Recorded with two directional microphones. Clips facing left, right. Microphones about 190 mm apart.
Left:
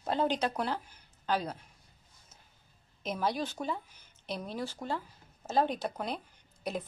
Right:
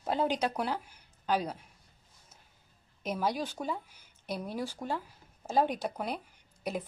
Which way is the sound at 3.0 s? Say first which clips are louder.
Even; 10° right (ahead or behind).